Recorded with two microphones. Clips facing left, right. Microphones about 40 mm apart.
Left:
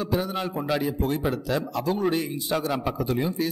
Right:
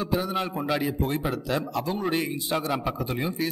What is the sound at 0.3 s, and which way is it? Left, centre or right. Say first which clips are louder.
Speech: even; centre.